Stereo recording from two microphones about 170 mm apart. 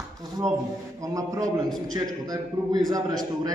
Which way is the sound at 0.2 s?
20° right (ahead or behind).